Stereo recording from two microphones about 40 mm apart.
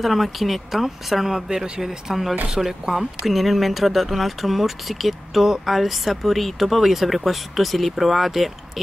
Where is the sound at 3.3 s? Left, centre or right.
Centre.